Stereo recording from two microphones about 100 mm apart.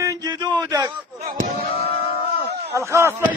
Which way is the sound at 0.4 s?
45° right (ahead or behind).